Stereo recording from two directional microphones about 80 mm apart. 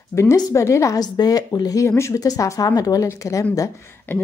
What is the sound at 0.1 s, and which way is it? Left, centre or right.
Speech, left.